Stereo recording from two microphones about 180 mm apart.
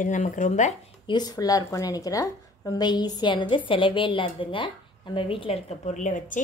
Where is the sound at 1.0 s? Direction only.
25° left (ahead or behind); by 6.4 s 45° left (ahead or behind).